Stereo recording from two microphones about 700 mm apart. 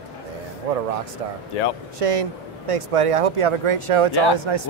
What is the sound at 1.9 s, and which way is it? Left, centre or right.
Speech, right.